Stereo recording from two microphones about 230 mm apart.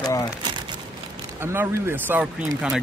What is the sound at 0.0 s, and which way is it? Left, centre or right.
Crumpling, centre.